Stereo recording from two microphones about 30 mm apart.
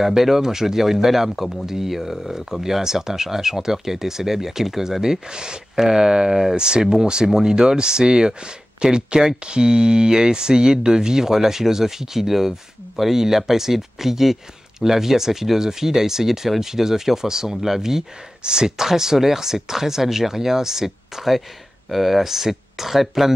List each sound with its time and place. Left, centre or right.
0.0 s speech: centre
18.4 s speech: right
18.9 s speech: centre